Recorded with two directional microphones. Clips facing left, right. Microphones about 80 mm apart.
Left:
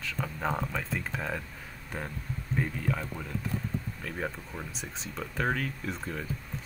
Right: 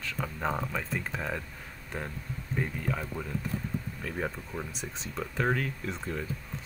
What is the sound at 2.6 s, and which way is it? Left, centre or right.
Speech, centre.